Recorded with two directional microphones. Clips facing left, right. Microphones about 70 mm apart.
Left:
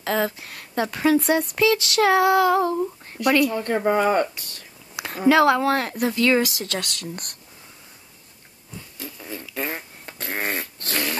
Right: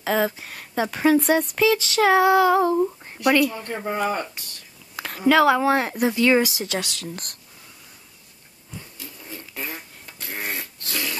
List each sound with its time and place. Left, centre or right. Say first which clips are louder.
0.0 s speech: right 1 dB; centre
2.8 s a sound: right 2 dB; centre
3.5 s speech: left 6 dB; left
4.9 s a sound: left 1 dB; centre
5.3 s speech: even; centre
5.6 s speech: right 1 dB; centre
6.9 s speech: left 1 dB; centre
9.6 s fart: left 5 dB; left